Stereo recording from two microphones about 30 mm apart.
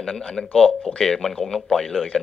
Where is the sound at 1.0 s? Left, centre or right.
Centre.